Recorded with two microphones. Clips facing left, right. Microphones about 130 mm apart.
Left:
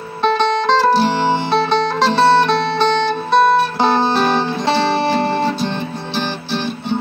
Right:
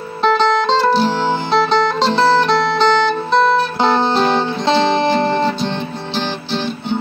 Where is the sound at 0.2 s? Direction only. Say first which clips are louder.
Right 1 dB; 15° left (ahead or behind).